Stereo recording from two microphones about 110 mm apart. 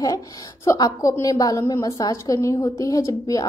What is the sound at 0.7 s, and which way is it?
A woman's voice, 35° left (ahead or behind).